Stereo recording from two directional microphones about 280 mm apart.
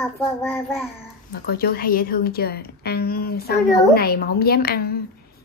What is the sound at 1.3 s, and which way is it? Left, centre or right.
A woman's voice, left.